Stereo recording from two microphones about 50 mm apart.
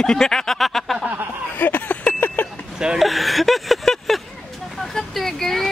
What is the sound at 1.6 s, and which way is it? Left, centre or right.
Vehicle, left.